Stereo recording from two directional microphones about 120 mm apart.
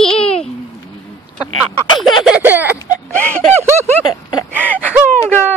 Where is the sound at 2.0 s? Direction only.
5° right (ahead or behind).